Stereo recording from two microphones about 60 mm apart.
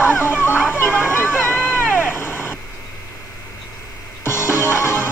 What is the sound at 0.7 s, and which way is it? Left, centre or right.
Vehicle, left.